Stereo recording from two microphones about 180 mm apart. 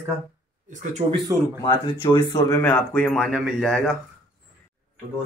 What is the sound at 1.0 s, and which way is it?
Speech, 30° right (ahead or behind).